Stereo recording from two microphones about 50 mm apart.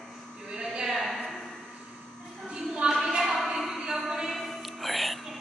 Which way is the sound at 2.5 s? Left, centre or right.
Centre.